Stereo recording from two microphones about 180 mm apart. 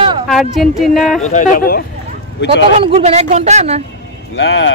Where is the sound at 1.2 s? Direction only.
45° left (ahead or behind).